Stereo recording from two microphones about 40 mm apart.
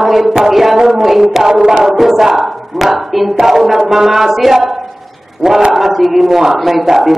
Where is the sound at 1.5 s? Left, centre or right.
Centre.